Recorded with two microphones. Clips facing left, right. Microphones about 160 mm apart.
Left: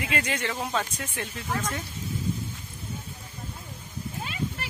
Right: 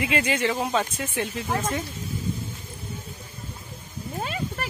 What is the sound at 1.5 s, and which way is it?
Speech, 25° right (ahead or behind).